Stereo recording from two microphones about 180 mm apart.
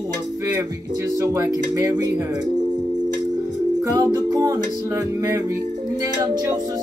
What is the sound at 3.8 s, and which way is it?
Music, 20° right (ahead or behind).